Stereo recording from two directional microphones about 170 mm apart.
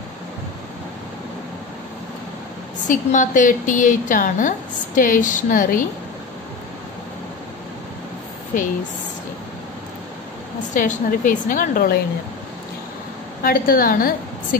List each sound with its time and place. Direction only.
2.9 s a woman's voice: 50° left (ahead or behind)
10.7 s a woman's voice: 50° left (ahead or behind)
13.4 s a woman's voice: 60° left (ahead or behind)